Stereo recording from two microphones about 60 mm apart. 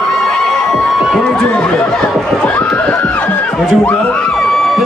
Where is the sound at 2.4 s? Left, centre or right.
Left.